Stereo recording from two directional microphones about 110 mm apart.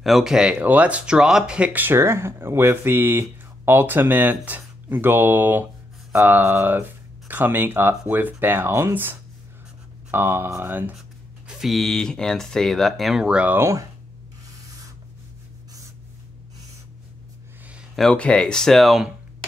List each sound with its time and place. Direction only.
0.0 s speech: centre (ahead or behind); by 11.0 s 20° right (ahead or behind)
11.0 s speech: 5° right (ahead or behind)
13.6 s speech: 30° right (ahead or behind)
17.9 s speech: 5° left (ahead or behind)